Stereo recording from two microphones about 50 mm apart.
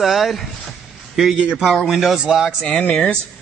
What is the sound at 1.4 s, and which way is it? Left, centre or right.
Speech, centre.